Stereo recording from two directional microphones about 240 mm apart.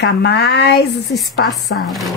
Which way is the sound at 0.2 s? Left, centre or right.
Left.